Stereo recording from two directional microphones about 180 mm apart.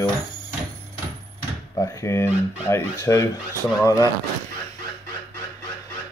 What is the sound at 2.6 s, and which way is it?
Speech, 15° left (ahead or behind).